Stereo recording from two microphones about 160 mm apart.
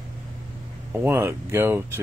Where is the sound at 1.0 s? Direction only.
15° right (ahead or behind).